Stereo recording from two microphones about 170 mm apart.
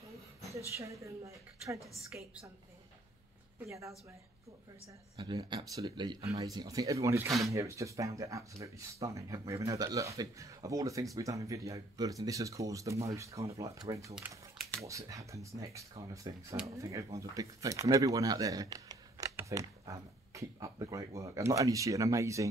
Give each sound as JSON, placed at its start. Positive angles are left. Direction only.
{"t": 0.7, "sound": "a woman's voice", "side_deg": -20}
{"t": 3.6, "sound": "a woman's voice", "side_deg": -15}
{"t": 5.1, "sound": "a woman's voice", "side_deg": -25}